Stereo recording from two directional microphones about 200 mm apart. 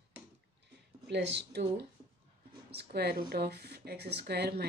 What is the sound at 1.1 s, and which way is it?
Speech, 60° right (ahead or behind).